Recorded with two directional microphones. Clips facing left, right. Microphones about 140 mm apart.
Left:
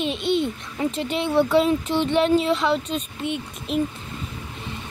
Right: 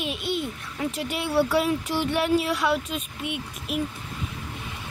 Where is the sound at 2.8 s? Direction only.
5° right (ahead or behind).